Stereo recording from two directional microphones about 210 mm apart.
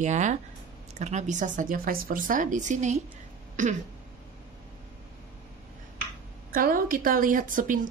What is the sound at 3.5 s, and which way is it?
Throat clearing, 35° right (ahead or behind).